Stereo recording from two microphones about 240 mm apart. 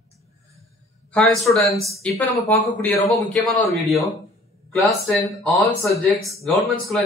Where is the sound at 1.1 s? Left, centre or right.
Centre.